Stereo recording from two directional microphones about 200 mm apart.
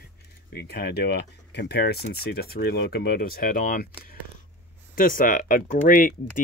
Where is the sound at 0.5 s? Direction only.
55° left (ahead or behind).